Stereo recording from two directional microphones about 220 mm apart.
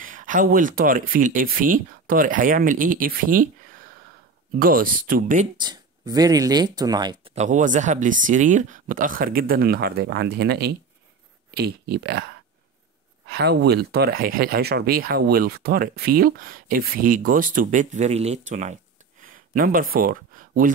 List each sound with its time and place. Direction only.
0.0 s speech: 35° right (ahead or behind)
5.6 s speech: 20° right (ahead or behind); by 12.3 s 50° right (ahead or behind)
13.3 s speech: 50° right (ahead or behind); by 18.8 s 35° right (ahead or behind)
19.2 s a sound: 40° right (ahead or behind)